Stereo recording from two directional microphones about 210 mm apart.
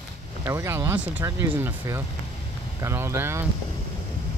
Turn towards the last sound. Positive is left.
turn(degrees=-10)  # may be behind; listen again after turning